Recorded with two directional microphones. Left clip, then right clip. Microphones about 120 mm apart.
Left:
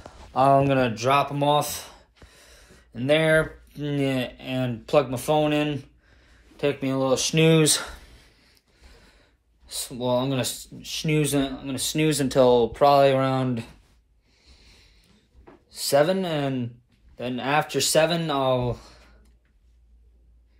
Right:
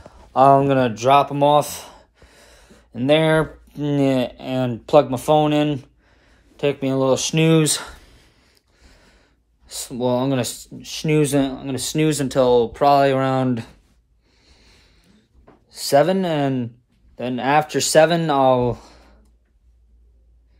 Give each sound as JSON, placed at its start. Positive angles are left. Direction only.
{"t": 0.0, "sound": "speech", "side_deg": -20}
{"t": 7.3, "sound": "a sound", "side_deg": -10}
{"t": 9.0, "sound": "speech", "side_deg": -25}
{"t": 12.1, "sound": "speech", "side_deg": -15}
{"t": 14.4, "sound": "a sound", "side_deg": -35}
{"t": 15.7, "sound": "speech", "side_deg": -30}